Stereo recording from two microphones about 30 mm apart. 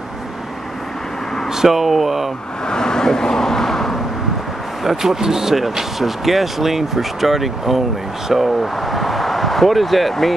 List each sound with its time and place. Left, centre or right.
1.5 s speech: centre
2.7 s vehicle: left
4.8 s speech: centre